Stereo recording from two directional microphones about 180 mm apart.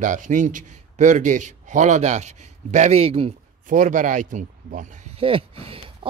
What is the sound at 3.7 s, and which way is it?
A man's voice, 45° right (ahead or behind).